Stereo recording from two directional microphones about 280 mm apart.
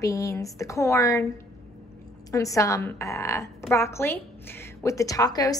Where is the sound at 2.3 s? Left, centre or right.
Centre.